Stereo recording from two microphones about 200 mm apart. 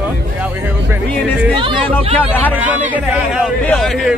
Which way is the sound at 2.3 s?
10° left (ahead or behind).